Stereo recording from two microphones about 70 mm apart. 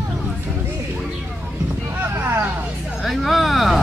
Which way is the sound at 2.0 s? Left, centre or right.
Right.